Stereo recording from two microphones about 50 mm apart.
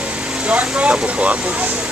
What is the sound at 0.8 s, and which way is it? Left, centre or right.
Speech, right.